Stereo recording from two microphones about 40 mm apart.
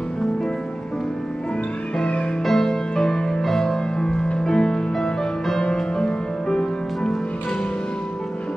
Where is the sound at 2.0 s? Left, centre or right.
Left.